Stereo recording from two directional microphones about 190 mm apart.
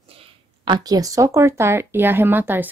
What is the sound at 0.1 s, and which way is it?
Speech, 25° right (ahead or behind).